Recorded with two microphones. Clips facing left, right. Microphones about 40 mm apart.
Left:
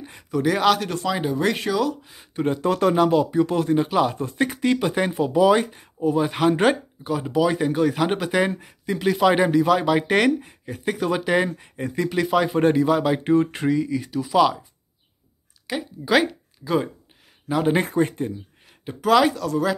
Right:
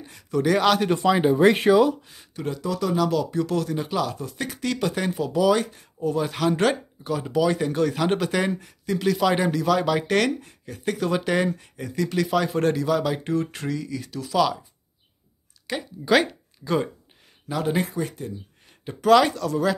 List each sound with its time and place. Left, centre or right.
0.3 s speech: centre
0.7 s speech: centre
2.3 s speech: left
3.3 s speech: left
15.6 s speech: centre
17.5 s speech: centre
17.7 s speech: left
18.9 s speech: centre